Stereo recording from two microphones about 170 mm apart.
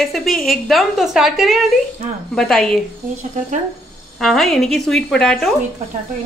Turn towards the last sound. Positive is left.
turn(degrees=5)  # may be behind; listen again after turning